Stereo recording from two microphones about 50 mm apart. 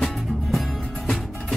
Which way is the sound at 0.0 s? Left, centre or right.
Centre.